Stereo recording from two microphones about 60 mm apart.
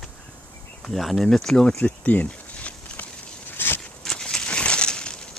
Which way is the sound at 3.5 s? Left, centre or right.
Left.